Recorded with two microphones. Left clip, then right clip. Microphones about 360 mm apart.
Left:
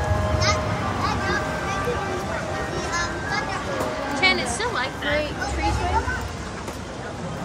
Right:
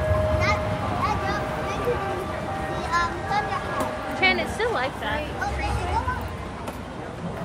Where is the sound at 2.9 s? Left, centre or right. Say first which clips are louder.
Right 4 dB; centre.